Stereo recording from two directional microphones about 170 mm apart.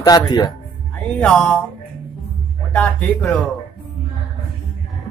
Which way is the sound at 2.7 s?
10° left (ahead or behind).